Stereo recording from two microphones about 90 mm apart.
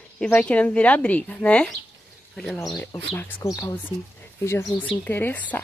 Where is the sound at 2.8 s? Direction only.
20° left (ahead or behind).